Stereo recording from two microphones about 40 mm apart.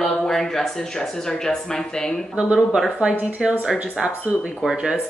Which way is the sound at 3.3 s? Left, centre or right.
Centre.